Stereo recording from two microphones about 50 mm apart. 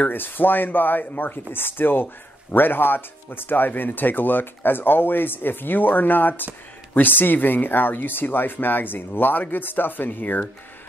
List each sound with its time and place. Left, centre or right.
0.1 s speech: left